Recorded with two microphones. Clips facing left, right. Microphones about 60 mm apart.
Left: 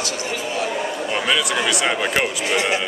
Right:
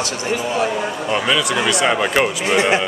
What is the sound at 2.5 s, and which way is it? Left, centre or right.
Speech, right.